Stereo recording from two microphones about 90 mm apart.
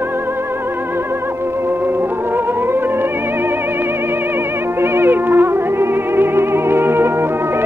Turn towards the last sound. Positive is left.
turn(degrees=-25)  # may be behind; listen again after turning